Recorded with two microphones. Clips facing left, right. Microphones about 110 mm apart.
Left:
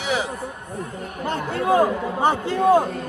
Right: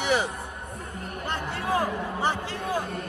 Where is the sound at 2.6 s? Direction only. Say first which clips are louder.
Left 15 dB; 60° left (ahead or behind).